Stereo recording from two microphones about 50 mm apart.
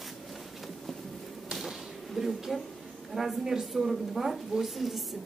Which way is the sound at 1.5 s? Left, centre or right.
Centre.